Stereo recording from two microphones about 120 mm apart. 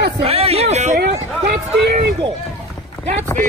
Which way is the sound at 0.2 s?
55° right (ahead or behind).